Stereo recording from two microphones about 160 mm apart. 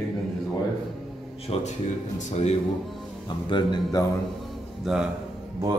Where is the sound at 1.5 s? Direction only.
40° left (ahead or behind).